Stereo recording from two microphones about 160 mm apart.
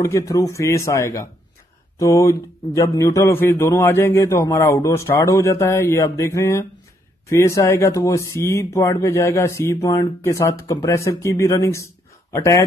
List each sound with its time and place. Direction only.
0.0 s speech: 20° left (ahead or behind)